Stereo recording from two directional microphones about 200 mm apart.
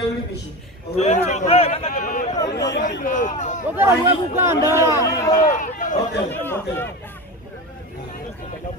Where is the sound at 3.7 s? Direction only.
10° right (ahead or behind).